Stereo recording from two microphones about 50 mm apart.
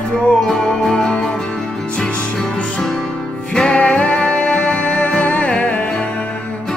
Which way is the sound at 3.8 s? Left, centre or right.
Left.